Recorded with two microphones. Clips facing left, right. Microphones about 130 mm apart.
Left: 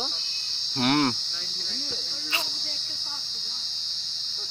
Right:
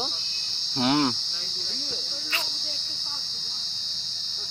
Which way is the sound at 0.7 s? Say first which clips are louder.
Even; 15° right (ahead or behind).